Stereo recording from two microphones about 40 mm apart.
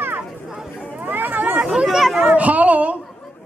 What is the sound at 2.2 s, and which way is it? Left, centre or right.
Speech, right.